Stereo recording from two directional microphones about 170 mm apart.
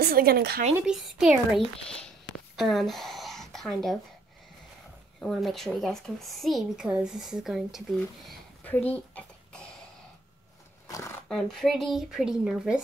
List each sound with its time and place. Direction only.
0.0 s speech: 60° right (ahead or behind)
0.7 s speech: 5° right (ahead or behind)
1.6 s speech: 35° left (ahead or behind)
2.0 s a sound: centre (ahead or behind)
5.2 s speech: centre (ahead or behind)
10.9 s a sound: 20° left (ahead or behind)
11.2 s speech: centre (ahead or behind)